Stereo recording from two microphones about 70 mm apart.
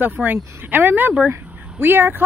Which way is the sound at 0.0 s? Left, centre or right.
Right.